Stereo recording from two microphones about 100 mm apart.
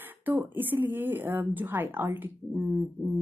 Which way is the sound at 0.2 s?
20° right (ahead or behind).